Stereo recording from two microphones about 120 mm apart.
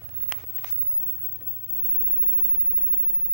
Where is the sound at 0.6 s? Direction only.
80° left.